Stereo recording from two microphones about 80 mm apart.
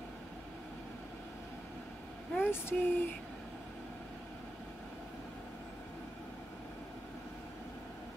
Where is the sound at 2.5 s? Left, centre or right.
Left.